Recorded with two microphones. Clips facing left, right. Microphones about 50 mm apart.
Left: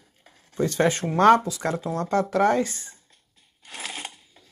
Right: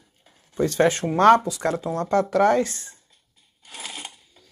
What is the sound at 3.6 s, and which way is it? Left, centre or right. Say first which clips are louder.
Coin: left 2 dB; left.